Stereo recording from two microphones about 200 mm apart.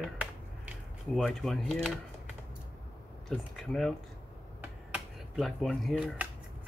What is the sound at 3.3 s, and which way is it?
Speech, centre (ahead or behind).